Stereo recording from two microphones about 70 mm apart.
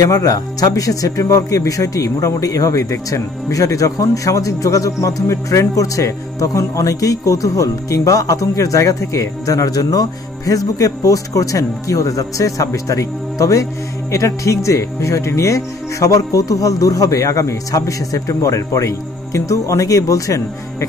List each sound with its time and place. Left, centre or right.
0.0 s speech: left